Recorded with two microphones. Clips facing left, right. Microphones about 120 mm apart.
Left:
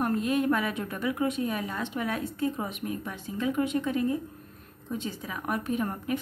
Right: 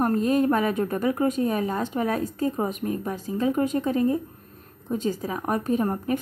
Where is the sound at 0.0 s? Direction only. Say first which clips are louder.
Right 5 dB; 40° right (ahead or behind).